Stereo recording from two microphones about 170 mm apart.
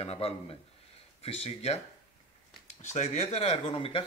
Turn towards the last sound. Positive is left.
turn(degrees=30)  # may be behind; listen again after turning